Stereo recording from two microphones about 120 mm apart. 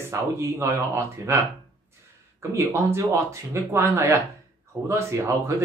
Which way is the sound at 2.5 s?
25° right (ahead or behind).